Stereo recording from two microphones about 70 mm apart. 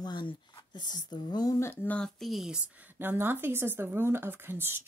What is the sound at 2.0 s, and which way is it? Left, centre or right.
Speech, centre.